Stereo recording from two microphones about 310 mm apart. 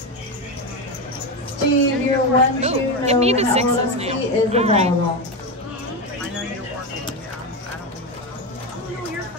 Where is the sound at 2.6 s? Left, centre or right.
Centre.